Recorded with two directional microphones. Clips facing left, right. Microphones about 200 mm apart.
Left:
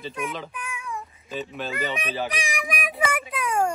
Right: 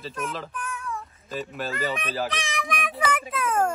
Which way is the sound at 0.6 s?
15° left (ahead or behind).